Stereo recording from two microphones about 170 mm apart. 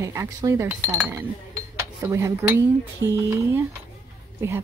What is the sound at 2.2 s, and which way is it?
Speech, 15° right (ahead or behind).